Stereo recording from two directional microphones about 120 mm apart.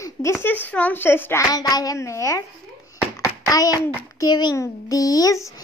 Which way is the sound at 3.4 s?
30° left (ahead or behind).